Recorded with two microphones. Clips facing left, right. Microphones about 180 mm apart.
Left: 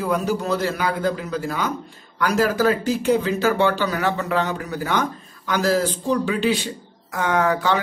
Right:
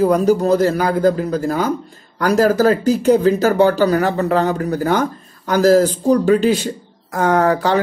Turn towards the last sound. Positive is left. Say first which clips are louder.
# right 5 dB
turn(degrees=-40)  # may be behind; listen again after turning